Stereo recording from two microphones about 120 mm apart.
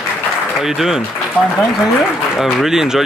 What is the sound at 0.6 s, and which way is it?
Speech, 5° right (ahead or behind).